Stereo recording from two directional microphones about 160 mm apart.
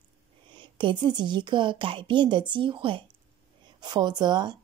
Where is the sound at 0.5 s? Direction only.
30° right (ahead or behind).